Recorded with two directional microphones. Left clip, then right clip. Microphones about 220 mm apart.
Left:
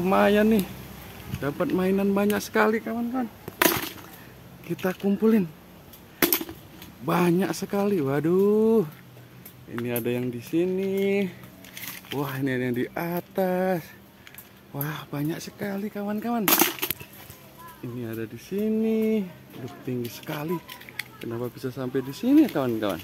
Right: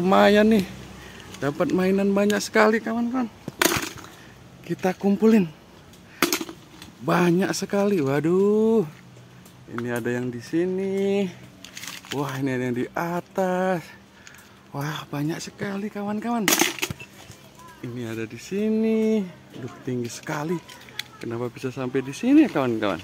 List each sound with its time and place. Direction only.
0.0 s speech: 20° right (ahead or behind)
1.8 s speech: 15° right (ahead or behind); by 3.9 s 30° right (ahead or behind)
4.6 s speech: 15° right (ahead or behind)
6.1 s a sound: 25° right (ahead or behind)
7.1 s speech: 15° right (ahead or behind)
11.0 s a sound: 15° right (ahead or behind)
12.2 s speech: 10° right (ahead or behind)
14.7 s speech: 15° right (ahead or behind)
16.4 s speech: 25° right (ahead or behind)
18.0 s speech: 15° right (ahead or behind)
20.2 s speech: 20° right (ahead or behind)